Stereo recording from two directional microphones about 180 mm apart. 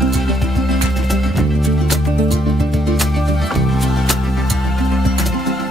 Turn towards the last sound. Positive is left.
turn(degrees=0)  # may be behind; listen again after turning